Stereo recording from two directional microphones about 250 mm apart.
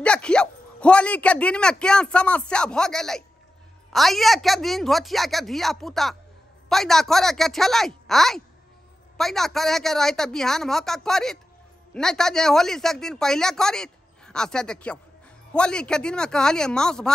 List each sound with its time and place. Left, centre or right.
0.0 s a man's voice: centre